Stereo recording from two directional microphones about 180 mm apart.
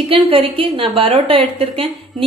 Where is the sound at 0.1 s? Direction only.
30° right (ahead or behind).